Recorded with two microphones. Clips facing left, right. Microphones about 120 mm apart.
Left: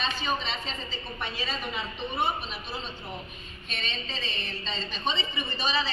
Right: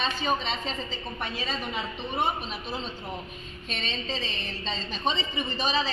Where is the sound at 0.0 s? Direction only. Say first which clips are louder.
Right 2 dB; 40° right (ahead or behind).